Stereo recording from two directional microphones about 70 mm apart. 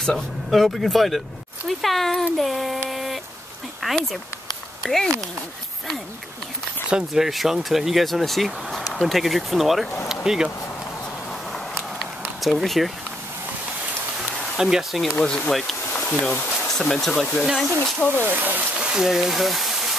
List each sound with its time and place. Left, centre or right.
0.0 s speech: centre
2.9 s a sound: centre
3.8 s speech: centre
6.9 s speech: centre
11.5 s a sound: centre
14.6 s speech: centre
15.1 s speech: centre
16.6 s speech: centre
18.2 s speech: right
18.8 s speech: centre